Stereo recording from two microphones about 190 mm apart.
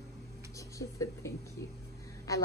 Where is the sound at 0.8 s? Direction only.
15° left (ahead or behind).